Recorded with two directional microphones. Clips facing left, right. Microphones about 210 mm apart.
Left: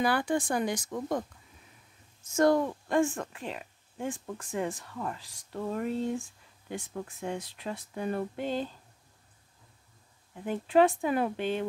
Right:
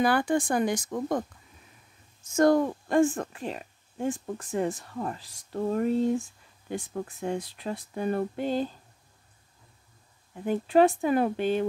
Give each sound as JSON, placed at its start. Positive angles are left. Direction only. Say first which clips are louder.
{"t": 0.0, "sound": "speech", "louder": "right 4 dB", "side_deg": -50}
{"t": 2.3, "sound": "speech", "louder": "right 3 dB", "side_deg": -45}
{"t": 10.4, "sound": "speech", "louder": "right 3 dB", "side_deg": -40}